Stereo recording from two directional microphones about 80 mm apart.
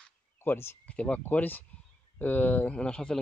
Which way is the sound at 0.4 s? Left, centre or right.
Left.